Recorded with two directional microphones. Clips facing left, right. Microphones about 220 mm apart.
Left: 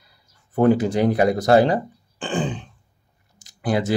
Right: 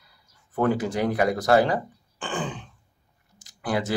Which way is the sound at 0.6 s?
25° left (ahead or behind).